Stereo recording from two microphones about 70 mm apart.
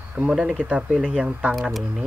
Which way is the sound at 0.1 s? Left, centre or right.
Centre.